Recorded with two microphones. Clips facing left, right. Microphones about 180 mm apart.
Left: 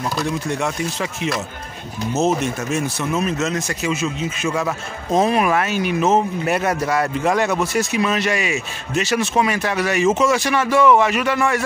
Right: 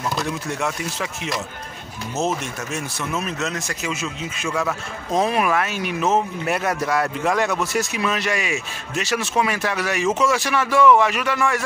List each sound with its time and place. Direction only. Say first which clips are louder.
0.2 s speech: left 3 dB; centre (ahead or behind)
2.2 s speech: left 6 dB; 35° left (ahead or behind)
3.3 s speech: left 5 dB; centre (ahead or behind)